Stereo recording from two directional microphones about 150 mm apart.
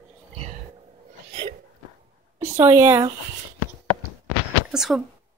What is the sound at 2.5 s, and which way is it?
Speech, 15° right (ahead or behind).